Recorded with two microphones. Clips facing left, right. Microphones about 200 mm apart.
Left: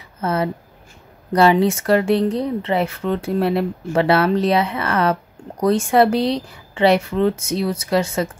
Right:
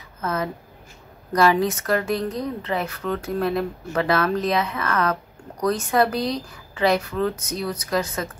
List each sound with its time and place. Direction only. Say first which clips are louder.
0.2 s speech: left 5 dB; 30° left (ahead or behind)